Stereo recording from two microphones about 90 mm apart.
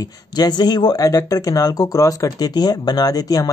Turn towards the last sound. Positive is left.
turn(degrees=45)  # may be behind; listen again after turning